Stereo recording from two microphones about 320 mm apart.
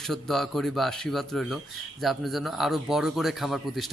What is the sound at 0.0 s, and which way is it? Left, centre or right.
Speech, centre.